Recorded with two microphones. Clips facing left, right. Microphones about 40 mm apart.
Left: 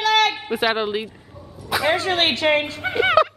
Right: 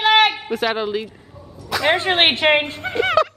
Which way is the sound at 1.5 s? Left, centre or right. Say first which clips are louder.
Left 1 dB; centre.